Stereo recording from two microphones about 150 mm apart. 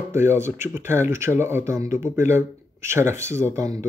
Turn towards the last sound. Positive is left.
turn(degrees=-20)  # may be behind; listen again after turning